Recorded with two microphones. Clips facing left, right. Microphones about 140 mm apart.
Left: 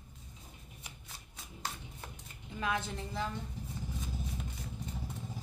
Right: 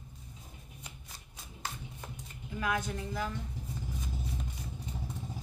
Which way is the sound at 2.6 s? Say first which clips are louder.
Right 2 dB; 25° left (ahead or behind).